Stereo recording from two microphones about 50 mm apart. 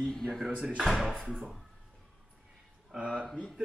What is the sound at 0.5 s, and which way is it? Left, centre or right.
Speech, right.